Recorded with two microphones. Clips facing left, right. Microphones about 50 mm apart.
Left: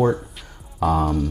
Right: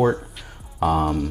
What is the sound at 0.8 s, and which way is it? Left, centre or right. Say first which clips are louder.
Speech: even; right.